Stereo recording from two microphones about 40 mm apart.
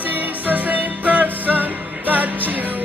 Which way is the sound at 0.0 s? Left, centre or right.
Right.